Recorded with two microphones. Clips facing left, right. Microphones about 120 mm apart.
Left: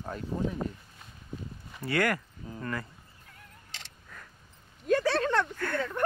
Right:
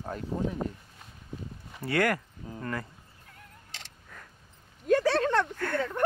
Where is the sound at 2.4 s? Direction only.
30° right (ahead or behind).